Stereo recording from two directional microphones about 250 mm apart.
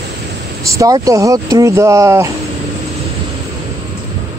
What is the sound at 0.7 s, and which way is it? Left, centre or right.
Speech, centre.